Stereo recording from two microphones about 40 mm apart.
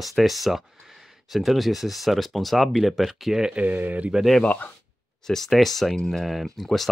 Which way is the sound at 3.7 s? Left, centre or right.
Right.